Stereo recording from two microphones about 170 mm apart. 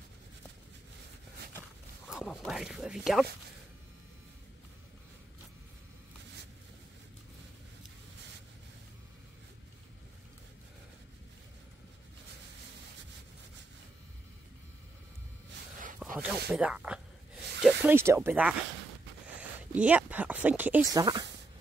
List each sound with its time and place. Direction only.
2.0 s speech: centre (ahead or behind)
16.2 s a sound: 10° right (ahead or behind)
17.6 s snake: centre (ahead or behind)
17.9 s speech: 15° right (ahead or behind)
19.7 s speech: 10° right (ahead or behind)
20.9 s speech: 25° right (ahead or behind)